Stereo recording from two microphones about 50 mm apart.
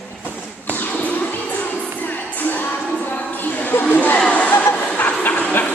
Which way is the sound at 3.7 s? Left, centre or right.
Left.